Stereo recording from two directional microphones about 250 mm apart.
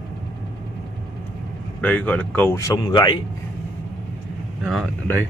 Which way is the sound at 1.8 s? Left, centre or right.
Centre.